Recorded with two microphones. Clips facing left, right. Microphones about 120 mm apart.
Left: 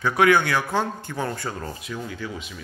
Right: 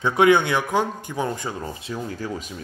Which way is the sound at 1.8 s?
35° right (ahead or behind).